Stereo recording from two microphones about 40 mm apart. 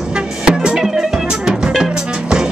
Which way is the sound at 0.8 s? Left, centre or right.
Centre.